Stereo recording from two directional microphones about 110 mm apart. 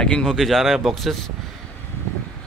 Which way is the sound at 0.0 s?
5° left (ahead or behind).